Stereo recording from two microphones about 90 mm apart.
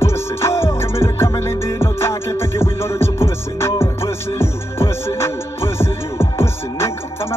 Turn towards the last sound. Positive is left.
turn(degrees=30)  # may be behind; listen again after turning